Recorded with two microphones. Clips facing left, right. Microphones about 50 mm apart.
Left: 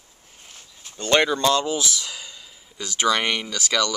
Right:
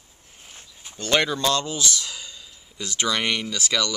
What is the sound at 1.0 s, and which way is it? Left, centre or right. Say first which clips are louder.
Speech: left 3 dB; centre.